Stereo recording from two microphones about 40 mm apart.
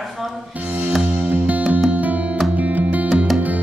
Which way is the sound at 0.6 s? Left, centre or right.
Right.